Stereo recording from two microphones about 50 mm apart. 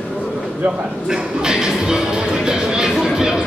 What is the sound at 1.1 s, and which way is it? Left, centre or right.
Music, centre.